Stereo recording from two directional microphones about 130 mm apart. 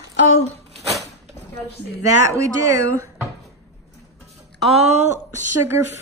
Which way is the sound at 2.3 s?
25° right (ahead or behind).